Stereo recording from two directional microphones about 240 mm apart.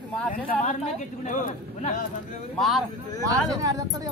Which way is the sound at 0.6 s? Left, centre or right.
Left.